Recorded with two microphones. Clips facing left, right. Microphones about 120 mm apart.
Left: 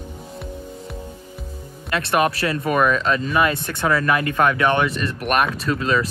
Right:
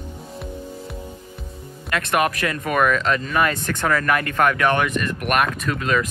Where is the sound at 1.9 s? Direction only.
30° left (ahead or behind).